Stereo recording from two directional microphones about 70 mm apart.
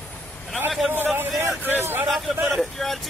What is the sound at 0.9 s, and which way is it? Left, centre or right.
Speech, right.